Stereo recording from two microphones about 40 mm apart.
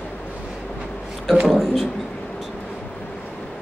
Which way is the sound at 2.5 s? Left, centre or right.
Left.